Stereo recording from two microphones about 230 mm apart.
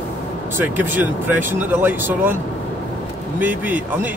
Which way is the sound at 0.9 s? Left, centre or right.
Centre.